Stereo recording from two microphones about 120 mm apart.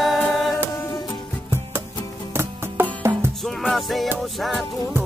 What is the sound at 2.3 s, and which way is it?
Music, 15° right (ahead or behind).